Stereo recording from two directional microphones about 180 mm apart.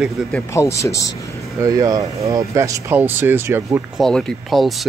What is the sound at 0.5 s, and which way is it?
Speech, 15° left (ahead or behind).